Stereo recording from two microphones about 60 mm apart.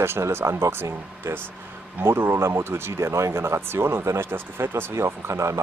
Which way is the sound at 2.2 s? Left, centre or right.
Right.